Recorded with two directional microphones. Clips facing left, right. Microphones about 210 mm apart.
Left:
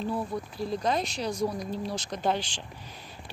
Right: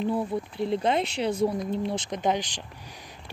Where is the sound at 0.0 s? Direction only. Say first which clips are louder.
Right 4 dB; 25° right (ahead or behind).